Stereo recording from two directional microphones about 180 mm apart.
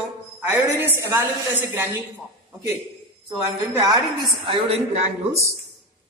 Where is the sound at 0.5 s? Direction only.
10° right (ahead or behind).